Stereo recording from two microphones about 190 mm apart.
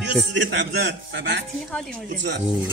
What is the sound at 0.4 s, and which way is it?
Speech, 70° right (ahead or behind).